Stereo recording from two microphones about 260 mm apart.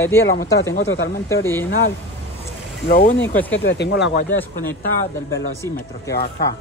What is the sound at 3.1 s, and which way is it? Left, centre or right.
Speech, centre.